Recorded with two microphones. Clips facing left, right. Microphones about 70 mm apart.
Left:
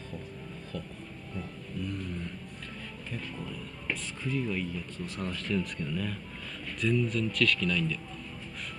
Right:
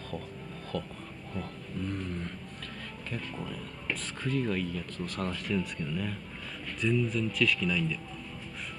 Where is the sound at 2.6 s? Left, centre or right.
Right.